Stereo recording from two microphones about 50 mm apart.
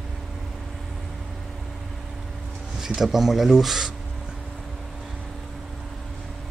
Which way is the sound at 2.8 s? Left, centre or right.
Centre.